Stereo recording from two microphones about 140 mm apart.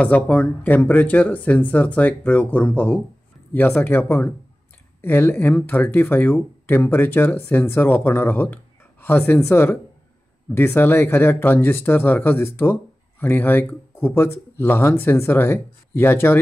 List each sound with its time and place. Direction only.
0.0 s speech: 10° left (ahead or behind)